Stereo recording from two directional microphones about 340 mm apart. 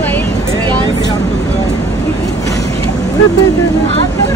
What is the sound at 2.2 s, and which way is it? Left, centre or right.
Vehicle, centre.